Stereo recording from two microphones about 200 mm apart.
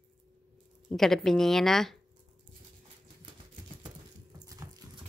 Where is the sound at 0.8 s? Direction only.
Centre (ahead or behind).